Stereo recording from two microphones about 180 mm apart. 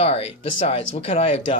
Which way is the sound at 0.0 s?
35° left (ahead or behind).